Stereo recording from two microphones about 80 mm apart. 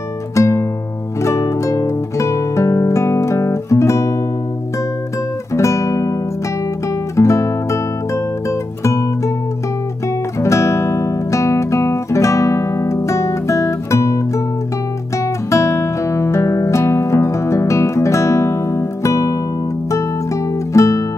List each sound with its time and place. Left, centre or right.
0.4 s music: left
5.5 s guitar: left
7.2 s music: left
10.4 s guitar: left
15.5 s music: left
20.7 s music: left